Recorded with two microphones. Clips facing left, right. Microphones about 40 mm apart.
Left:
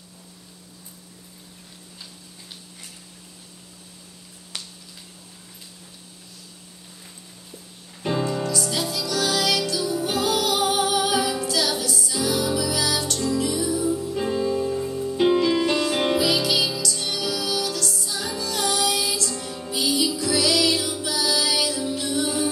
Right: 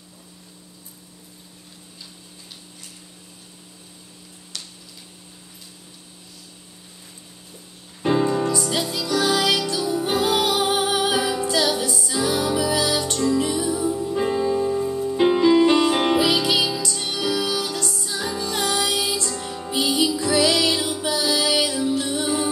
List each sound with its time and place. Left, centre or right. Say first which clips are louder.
8.0 s music: right 5 dB; centre
19.2 s music: right 2 dB; centre